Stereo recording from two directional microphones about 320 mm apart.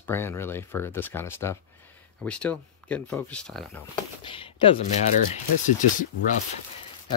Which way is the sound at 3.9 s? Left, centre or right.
Centre.